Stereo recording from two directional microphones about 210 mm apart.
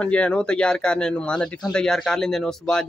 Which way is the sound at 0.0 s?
5° left (ahead or behind).